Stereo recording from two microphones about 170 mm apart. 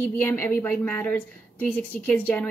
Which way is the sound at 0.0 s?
10° left (ahead or behind).